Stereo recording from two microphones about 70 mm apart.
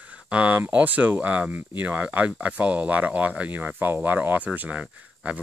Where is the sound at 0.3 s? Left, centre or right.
Centre.